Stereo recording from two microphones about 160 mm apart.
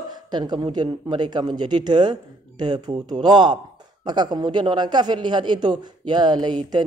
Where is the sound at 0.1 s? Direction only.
25° right (ahead or behind).